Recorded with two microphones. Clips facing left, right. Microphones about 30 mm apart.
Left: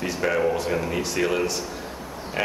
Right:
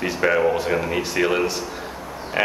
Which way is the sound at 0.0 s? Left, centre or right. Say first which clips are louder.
Right 4 dB; right.